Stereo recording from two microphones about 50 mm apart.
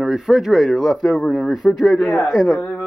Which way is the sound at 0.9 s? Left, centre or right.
Centre.